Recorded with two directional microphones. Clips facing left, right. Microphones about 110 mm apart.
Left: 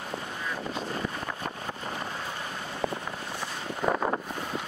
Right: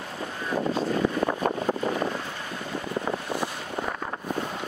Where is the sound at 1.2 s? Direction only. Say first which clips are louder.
Right 10 dB; 55° right (ahead or behind).